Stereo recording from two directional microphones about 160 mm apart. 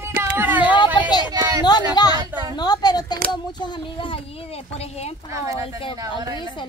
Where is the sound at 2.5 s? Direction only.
25° left (ahead or behind).